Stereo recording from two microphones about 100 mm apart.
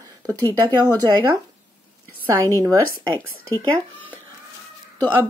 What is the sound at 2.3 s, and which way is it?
Speech, 35° right (ahead or behind).